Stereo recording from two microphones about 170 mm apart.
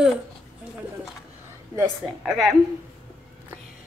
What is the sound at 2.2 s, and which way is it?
Speech, centre (ahead or behind).